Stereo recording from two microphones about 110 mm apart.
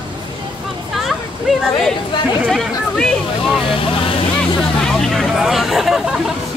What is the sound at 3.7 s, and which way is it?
Vehicle, 55° left (ahead or behind).